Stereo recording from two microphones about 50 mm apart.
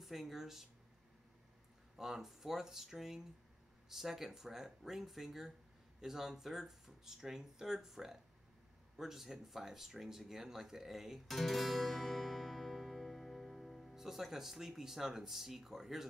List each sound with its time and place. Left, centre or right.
0.0 s speech: centre
2.0 s speech: centre
11.2 s music: centre
13.9 s speech: centre